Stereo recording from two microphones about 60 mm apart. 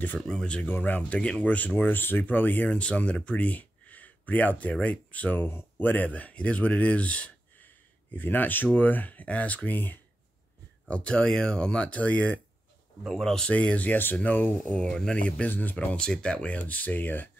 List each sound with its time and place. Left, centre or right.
0.3 s speech: centre
0.7 s speech: left
10.9 s speech: centre
13.1 s speech: centre
13.5 s speech: left
14.7 s speech: centre; by 17.3 s left